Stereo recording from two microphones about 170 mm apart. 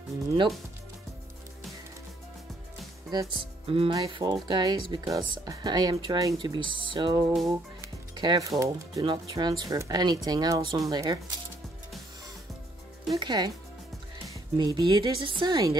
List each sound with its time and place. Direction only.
3.1 s speech: 25° right (ahead or behind)
4.0 s speech: 20° right (ahead or behind)
13.1 s speech: 25° right (ahead or behind)
14.6 s speech: 25° right (ahead or behind)